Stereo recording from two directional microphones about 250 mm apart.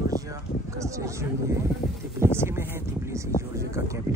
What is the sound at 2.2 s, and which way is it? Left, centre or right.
Speech, centre.